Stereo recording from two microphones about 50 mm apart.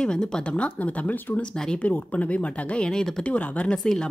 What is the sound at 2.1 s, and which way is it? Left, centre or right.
Speech, left.